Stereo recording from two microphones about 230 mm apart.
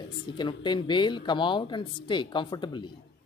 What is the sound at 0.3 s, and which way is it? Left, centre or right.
Speech, centre.